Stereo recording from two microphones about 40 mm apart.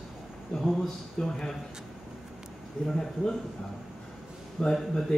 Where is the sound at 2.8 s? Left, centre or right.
Centre.